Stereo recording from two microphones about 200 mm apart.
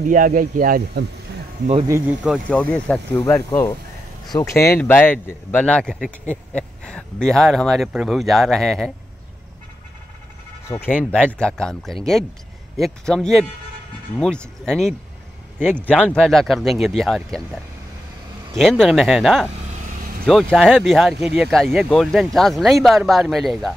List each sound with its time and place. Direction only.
0.1 s speech: 40° right (ahead or behind)
1.9 s speech: 10° right (ahead or behind)
10.7 s speech: 10° left (ahead or behind)
18.6 s speech: centre (ahead or behind)